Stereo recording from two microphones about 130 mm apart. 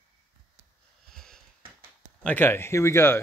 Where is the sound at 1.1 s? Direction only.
5° left (ahead or behind).